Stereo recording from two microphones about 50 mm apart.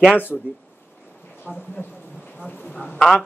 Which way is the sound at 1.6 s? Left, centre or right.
Left.